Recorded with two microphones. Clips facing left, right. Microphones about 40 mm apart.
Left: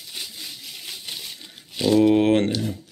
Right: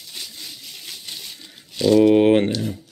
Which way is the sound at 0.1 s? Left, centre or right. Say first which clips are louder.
Left 1 dB; centre.